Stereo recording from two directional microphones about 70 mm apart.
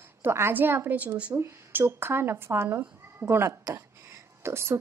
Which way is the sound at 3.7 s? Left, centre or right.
Right.